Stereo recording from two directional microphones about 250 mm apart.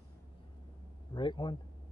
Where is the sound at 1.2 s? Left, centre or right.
Centre.